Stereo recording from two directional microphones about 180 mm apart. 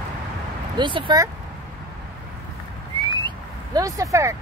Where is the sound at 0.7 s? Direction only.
25° right (ahead or behind).